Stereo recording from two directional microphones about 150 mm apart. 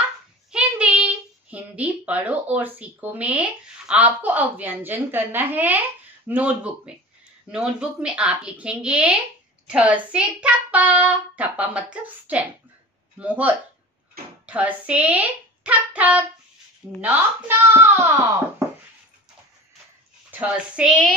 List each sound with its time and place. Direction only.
0.5 s speech: 5° right (ahead or behind)
20.2 s speech: 10° right (ahead or behind)